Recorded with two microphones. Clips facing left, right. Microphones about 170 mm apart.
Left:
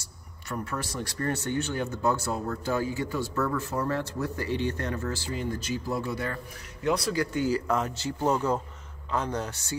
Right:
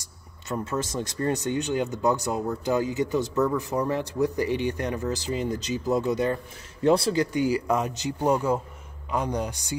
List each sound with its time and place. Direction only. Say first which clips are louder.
0.0 s speech: even; 20° right (ahead or behind)
7.3 s speech: right 3 dB; 15° right (ahead or behind)